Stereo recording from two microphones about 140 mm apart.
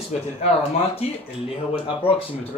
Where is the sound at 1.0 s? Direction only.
50° left (ahead or behind).